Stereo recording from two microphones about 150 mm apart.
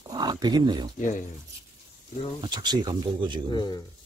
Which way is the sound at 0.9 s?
60° left (ahead or behind).